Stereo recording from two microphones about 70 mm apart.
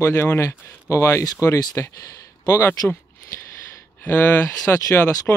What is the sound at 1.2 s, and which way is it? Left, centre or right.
Speech, left.